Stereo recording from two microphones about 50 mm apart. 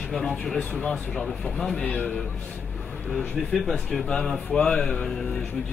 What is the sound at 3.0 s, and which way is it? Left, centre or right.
A man's voice, centre.